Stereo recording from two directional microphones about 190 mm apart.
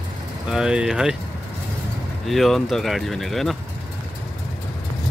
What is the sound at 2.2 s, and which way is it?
Speech, centre (ahead or behind).